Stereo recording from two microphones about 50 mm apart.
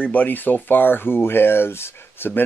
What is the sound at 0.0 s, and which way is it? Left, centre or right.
Speech, left.